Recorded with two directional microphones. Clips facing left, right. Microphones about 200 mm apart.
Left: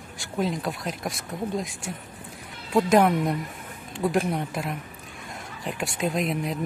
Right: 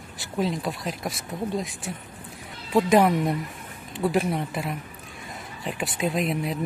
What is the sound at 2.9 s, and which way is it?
Speech, centre (ahead or behind).